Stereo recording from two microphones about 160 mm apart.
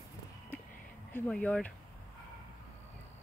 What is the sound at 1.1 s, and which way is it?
Speech, 5° left (ahead or behind).